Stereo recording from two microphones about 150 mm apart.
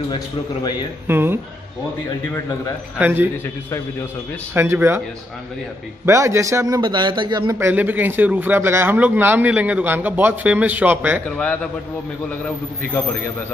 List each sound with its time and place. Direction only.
1.0 s a man's voice: 15° right (ahead or behind)
3.0 s a man's voice: 15° right (ahead or behind)
4.6 s a man's voice: 15° right (ahead or behind)
6.0 s a man's voice: 20° right (ahead or behind)
7.5 s a man's voice: 15° right (ahead or behind)
11.2 s a man's voice: 5° left (ahead or behind)